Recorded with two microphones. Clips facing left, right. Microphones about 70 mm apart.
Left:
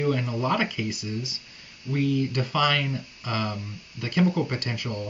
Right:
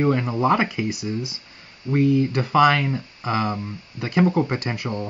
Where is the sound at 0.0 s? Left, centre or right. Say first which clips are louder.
Right 5 dB; right.